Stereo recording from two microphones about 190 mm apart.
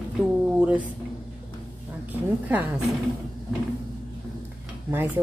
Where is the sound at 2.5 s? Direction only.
5° right (ahead or behind).